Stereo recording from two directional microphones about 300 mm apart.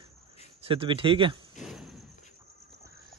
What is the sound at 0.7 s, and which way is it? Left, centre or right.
Speech, centre.